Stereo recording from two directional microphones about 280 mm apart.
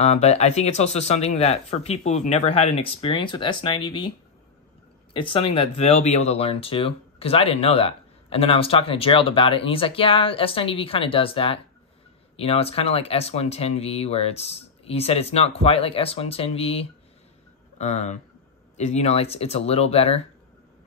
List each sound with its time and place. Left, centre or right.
0.0 s speech: left
5.1 s speech: centre